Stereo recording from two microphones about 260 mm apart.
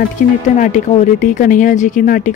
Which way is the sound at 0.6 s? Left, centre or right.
Left.